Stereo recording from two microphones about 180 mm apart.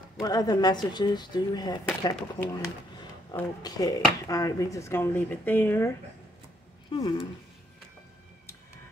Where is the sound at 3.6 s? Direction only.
20° left (ahead or behind).